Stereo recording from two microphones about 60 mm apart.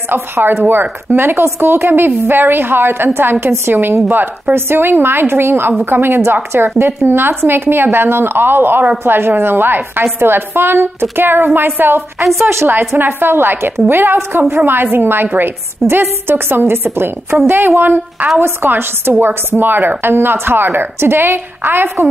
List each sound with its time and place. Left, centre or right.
0.1 s a woman's voice: right